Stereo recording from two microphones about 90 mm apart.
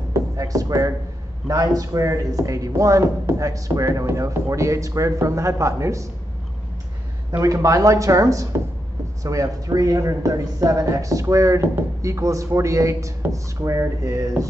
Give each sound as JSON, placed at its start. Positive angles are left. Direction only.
{"t": 0.1, "sound": "speech", "side_deg": -40}
{"t": 7.4, "sound": "speech", "side_deg": -40}